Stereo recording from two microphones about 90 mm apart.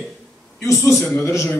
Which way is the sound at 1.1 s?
30° left (ahead or behind).